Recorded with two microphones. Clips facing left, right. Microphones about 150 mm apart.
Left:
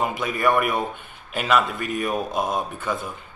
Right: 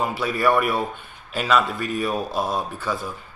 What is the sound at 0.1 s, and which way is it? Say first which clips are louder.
Speech: right 2 dB; 15° left (ahead or behind).